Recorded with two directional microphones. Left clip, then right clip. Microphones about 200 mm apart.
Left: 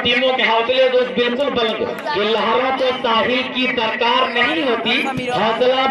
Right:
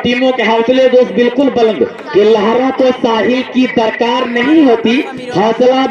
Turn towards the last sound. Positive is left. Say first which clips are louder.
# right 6 dB
turn(degrees=-35)  # may be behind; listen again after turning